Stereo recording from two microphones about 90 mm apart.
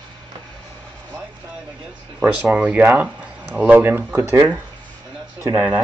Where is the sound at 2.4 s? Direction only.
15° right (ahead or behind).